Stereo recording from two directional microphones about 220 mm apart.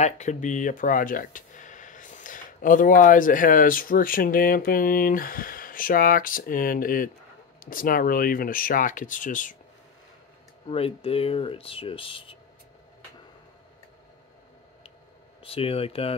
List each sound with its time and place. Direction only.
0.0 s speech: 30° left (ahead or behind)
10.7 s speech: 25° left (ahead or behind)
15.4 s speech: 25° left (ahead or behind)